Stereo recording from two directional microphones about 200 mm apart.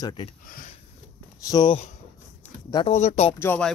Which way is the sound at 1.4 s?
20° left (ahead or behind).